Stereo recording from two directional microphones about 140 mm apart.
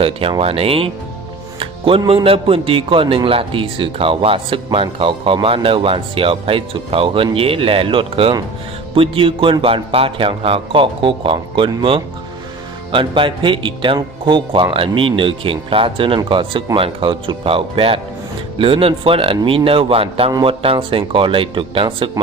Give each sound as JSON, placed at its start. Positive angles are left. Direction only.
{"t": 0.0, "sound": "a man's voice", "side_deg": -40}